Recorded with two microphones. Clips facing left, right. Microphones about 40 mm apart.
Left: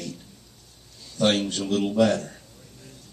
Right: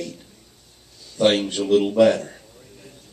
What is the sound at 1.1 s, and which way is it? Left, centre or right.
A man's voice, right.